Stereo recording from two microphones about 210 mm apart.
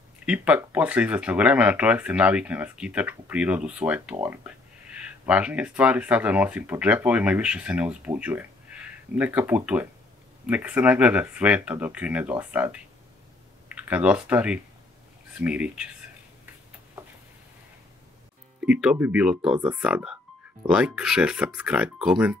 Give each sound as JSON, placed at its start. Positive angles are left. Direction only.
{"t": 0.2, "sound": "speech", "side_deg": -5}
{"t": 13.8, "sound": "speech", "side_deg": -5}
{"t": 18.6, "sound": "speech", "side_deg": -5}